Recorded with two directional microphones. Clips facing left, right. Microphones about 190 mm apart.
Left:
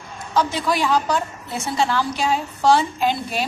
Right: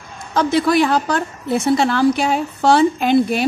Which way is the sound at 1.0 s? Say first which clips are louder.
Right 3 dB; 55° right (ahead or behind).